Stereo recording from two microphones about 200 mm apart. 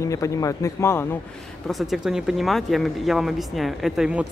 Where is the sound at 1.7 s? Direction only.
Centre (ahead or behind).